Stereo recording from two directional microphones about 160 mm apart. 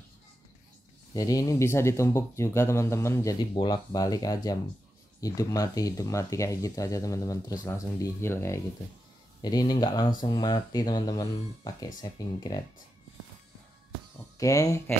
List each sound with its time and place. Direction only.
1.1 s speech: 20° left (ahead or behind)
14.4 s speech: 20° left (ahead or behind)